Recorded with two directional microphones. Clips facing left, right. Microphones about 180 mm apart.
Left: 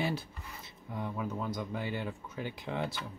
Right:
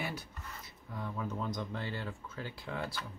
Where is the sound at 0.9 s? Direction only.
15° left (ahead or behind).